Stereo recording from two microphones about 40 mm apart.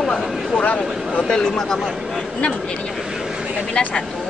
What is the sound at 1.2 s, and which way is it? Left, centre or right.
Speech, centre.